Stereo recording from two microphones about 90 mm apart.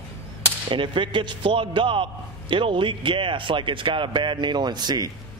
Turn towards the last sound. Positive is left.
turn(degrees=-50)  # may be behind; listen again after turning